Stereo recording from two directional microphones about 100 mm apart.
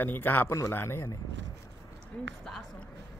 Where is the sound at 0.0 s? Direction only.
20° left (ahead or behind).